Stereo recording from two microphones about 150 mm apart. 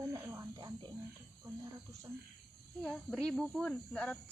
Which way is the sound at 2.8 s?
5° left (ahead or behind).